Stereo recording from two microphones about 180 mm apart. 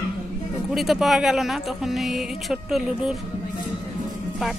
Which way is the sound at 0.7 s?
Centre (ahead or behind).